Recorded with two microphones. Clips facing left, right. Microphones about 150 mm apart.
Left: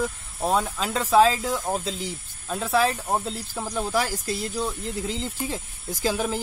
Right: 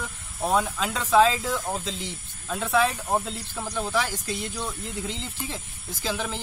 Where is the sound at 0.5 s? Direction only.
Centre (ahead or behind).